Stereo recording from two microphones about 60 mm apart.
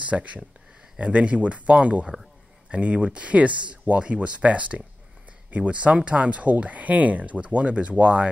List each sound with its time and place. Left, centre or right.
0.0 s speech: right